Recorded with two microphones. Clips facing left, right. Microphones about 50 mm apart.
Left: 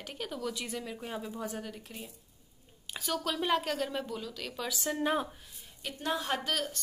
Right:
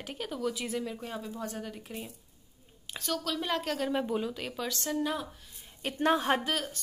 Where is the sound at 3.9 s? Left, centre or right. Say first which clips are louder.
Right 6 dB; right.